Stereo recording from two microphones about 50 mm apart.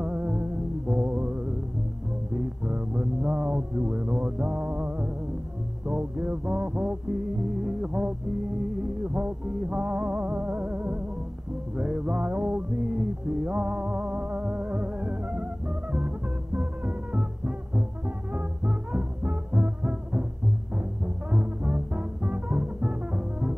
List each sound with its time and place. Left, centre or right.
0.0 s music: right
1.0 s mantra: right
2.3 s music: right
11.7 s music: centre